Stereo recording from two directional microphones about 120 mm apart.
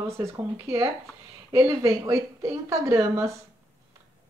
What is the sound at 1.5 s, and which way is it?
Speech, 25° right (ahead or behind).